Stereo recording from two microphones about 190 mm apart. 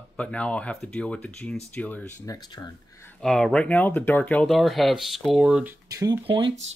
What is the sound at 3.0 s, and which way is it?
Speech, 5° left (ahead or behind).